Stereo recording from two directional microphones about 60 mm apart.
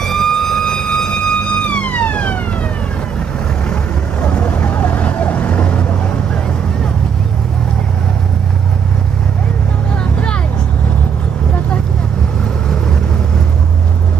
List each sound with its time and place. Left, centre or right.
0.0 s vehicle: centre
4.2 s vehicle: left